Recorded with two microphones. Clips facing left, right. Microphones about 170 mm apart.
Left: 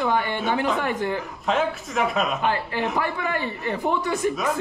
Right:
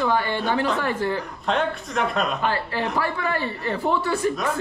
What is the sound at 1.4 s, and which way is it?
Speech, centre (ahead or behind).